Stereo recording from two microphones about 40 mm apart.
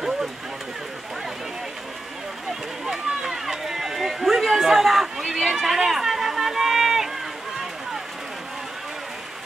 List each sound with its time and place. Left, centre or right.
2.8 s run: centre